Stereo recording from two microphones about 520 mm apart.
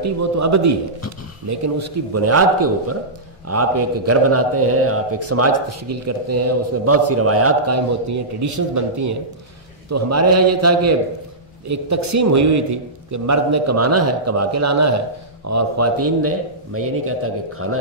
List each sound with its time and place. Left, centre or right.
0.0 s a man's voice: right